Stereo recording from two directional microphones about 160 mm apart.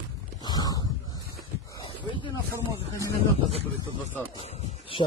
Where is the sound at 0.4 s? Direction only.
25° left (ahead or behind).